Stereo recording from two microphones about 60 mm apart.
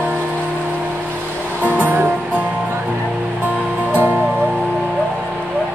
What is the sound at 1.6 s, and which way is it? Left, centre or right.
Music, right.